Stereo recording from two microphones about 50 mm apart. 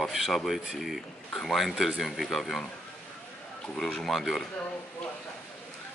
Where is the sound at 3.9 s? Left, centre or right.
Centre.